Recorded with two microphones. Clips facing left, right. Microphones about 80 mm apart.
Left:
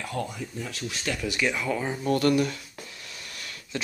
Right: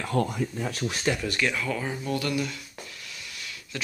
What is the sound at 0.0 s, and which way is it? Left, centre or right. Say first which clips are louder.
Speech: right 5 dB; right.